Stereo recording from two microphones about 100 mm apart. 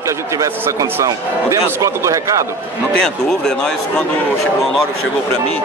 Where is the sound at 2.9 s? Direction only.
5° left (ahead or behind).